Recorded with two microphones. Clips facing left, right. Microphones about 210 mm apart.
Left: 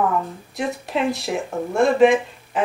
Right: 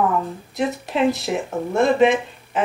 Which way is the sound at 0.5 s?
Centre (ahead or behind).